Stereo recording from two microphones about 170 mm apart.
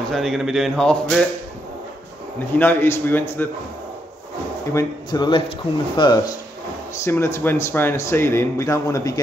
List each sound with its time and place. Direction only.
0.1 s a man's voice: centre (ahead or behind)
2.6 s speech: 15° left (ahead or behind)
4.7 s speech: 25° left (ahead or behind)
7.1 s speech: 15° left (ahead or behind)